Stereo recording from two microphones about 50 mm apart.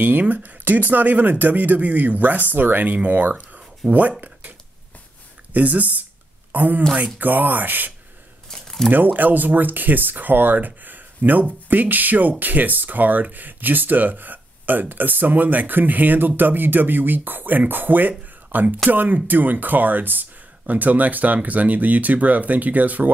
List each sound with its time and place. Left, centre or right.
0.0 s speech: right
5.5 s a woman's voice: right
8.5 s a sound: centre
8.9 s speech: right